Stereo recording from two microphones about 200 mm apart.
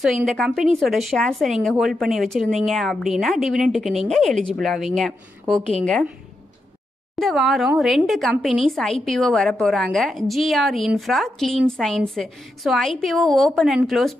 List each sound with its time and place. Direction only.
0.0 s speech: centre (ahead or behind)
7.2 s speech: centre (ahead or behind)